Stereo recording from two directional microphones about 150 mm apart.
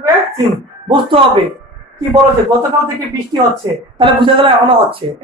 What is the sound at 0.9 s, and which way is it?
Speech, 35° right (ahead or behind).